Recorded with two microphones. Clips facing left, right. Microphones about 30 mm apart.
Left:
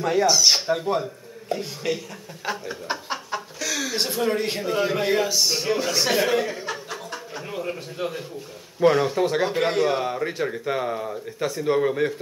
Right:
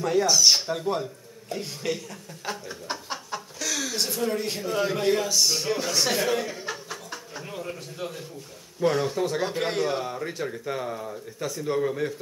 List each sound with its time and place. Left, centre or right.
0.0 s a man's voice: centre
2.4 s chuckle: centre
3.9 s a man's voice: left